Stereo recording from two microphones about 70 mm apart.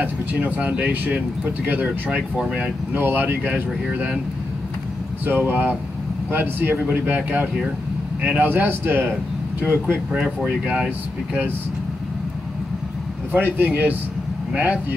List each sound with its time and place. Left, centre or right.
0.0 s speech: right
5.2 s speech: right
10.1 s speech: centre
13.3 s speech: right